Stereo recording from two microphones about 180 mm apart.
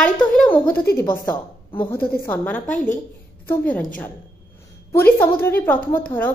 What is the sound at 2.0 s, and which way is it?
Speech, 60° left (ahead or behind).